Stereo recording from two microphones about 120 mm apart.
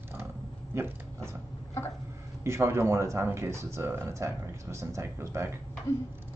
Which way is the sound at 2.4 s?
20° right (ahead or behind).